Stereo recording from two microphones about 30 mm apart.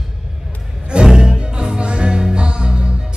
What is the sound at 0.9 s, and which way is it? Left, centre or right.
Music, right.